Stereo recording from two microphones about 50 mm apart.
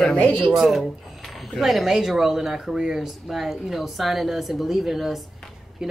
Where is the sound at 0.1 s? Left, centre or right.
Left.